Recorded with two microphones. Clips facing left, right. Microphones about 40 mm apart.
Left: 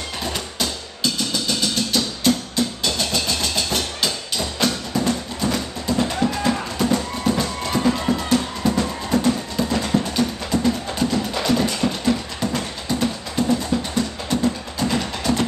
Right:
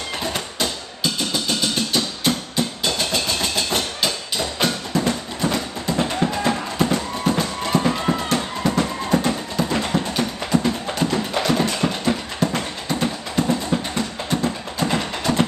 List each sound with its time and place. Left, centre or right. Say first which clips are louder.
0.2 s music: even; right